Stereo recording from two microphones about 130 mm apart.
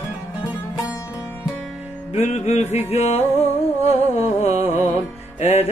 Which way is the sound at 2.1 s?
60° left (ahead or behind).